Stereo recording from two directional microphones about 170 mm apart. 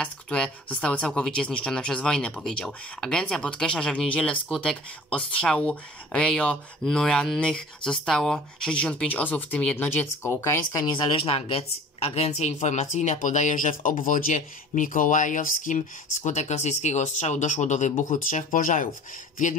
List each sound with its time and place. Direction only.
0.0 s speech: 5° left (ahead or behind)
11.1 s speech: 30° left (ahead or behind); by 18.9 s 50° left (ahead or behind)